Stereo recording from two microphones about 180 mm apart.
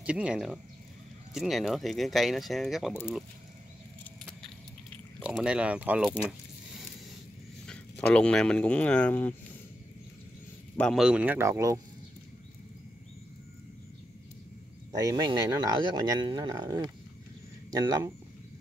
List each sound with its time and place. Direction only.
0.0 s speech: 5° right (ahead or behind)
5.2 s speech: 5° right (ahead or behind)
7.6 s speech: 5° left (ahead or behind)
10.8 s speech: centre (ahead or behind); by 11.8 s 15° right (ahead or behind)
15.0 s speech: 20° right (ahead or behind)